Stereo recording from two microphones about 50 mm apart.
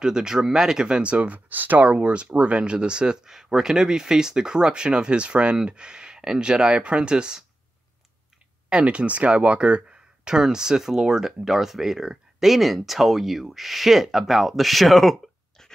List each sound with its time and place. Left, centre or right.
0.0 s speech: centre
1.1 s speech: right; by 7.4 s centre
8.6 s speech: right; by 15.7 s centre